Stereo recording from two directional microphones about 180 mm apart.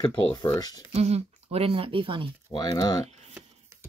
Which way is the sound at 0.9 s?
35° right (ahead or behind).